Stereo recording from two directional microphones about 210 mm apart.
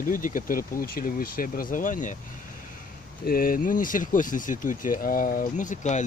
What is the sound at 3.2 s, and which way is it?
Speech, 45° left (ahead or behind).